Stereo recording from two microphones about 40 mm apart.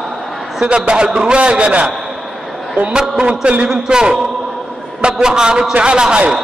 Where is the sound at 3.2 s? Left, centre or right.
Right.